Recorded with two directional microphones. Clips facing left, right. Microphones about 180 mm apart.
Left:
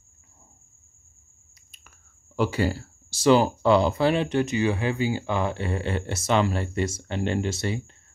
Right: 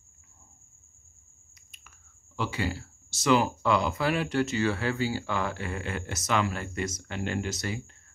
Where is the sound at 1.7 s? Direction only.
40° left (ahead or behind).